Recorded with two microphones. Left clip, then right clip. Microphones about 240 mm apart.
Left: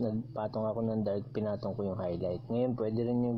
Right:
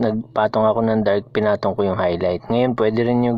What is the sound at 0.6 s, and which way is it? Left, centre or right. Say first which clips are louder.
Speech: right 16 dB; right.